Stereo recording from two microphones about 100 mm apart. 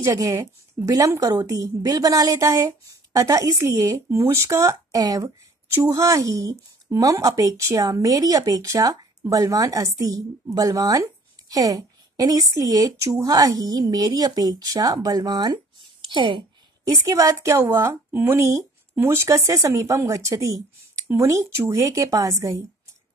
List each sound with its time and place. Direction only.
0.0 s a woman's voice: 35° right (ahead or behind)
16.0 s a woman's voice: 55° right (ahead or behind)
16.8 s a woman's voice: 35° right (ahead or behind)